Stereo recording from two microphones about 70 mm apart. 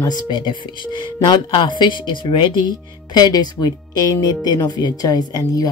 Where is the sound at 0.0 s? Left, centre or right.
Left.